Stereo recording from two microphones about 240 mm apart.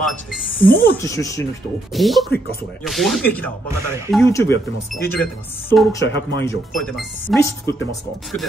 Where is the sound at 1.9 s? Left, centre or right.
Centre.